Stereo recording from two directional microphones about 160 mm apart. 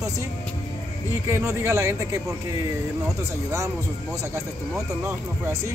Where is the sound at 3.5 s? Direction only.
20° right (ahead or behind).